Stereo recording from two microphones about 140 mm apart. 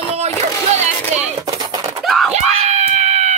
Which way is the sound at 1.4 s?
25° right (ahead or behind).